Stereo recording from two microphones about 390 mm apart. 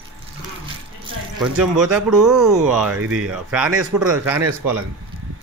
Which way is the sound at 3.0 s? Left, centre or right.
Right.